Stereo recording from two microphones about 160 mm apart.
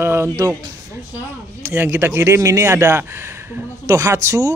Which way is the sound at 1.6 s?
15° right (ahead or behind).